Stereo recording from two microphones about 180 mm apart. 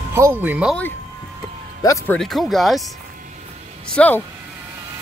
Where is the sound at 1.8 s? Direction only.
15° left (ahead or behind).